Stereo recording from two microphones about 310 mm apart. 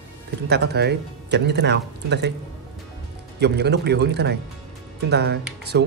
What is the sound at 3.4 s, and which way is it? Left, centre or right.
Speech, right.